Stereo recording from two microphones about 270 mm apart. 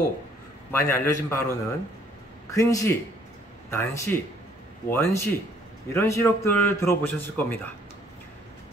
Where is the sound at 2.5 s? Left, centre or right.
Centre.